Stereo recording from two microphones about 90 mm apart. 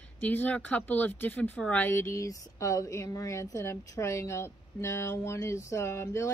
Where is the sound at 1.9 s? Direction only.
30° left (ahead or behind).